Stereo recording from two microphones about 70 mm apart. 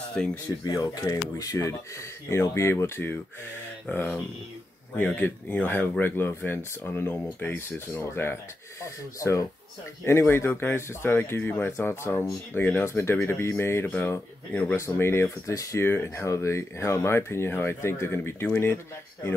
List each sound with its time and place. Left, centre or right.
0.2 s speech: centre
0.7 s speech: left
3.9 s speech: left
8.8 s speech: left
13.8 s speech: left
14.1 s speech: left